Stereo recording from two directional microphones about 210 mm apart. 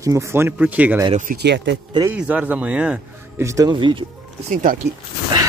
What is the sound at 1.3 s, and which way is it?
Speech, 55° right (ahead or behind).